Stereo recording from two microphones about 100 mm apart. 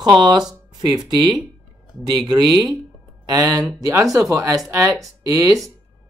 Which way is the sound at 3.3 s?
35° right (ahead or behind).